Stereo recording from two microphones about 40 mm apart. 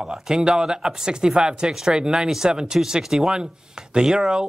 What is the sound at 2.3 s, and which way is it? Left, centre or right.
Speech, centre.